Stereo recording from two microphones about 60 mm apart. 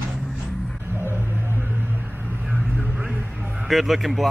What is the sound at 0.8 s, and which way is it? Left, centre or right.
Vehicle, right.